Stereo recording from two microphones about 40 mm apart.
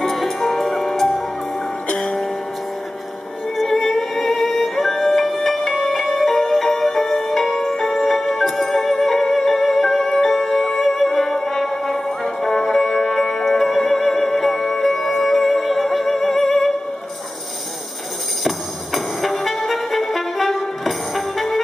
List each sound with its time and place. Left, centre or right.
0.0 s music: centre
2.0 s music: centre
3.5 s music: centre
18.9 s brass instrument: centre